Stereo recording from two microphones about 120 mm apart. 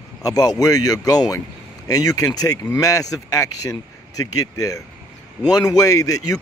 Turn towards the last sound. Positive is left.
turn(degrees=30)  # may be behind; listen again after turning